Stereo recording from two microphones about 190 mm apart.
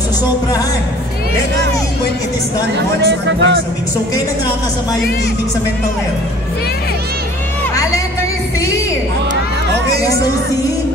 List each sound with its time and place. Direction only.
3.0 s speech: 70° right (ahead or behind)
7.7 s music: 15° left (ahead or behind)
9.8 s speech: 15° left (ahead or behind)